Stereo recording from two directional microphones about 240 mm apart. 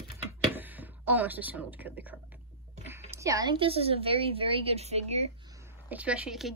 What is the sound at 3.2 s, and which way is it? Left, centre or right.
A woman's voice, centre.